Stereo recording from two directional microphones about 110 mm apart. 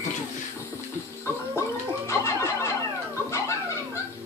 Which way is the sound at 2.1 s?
25° left (ahead or behind).